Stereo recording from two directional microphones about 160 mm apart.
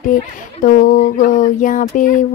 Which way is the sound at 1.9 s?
55° left (ahead or behind).